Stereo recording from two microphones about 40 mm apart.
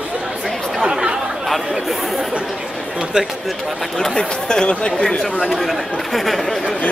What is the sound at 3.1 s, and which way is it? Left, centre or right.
Speech, right.